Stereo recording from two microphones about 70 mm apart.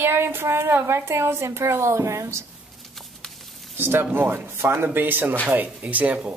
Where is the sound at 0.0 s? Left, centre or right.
Right.